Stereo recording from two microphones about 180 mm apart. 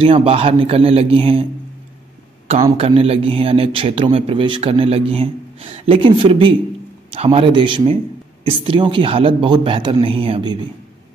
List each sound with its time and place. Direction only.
0.0 s a man's voice: 30° right (ahead or behind)
2.8 s a man's voice: 35° right (ahead or behind)